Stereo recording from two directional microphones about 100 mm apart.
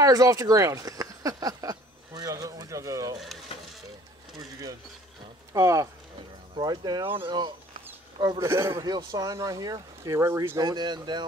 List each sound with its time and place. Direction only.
0.0 s a sound: 35° right (ahead or behind)
4.4 s speech: 35° right (ahead or behind)
6.6 s speech: 45° right (ahead or behind)
8.4 s speech: 25° right (ahead or behind)
8.7 s speech: 40° right (ahead or behind)
10.6 s speech: 45° right (ahead or behind)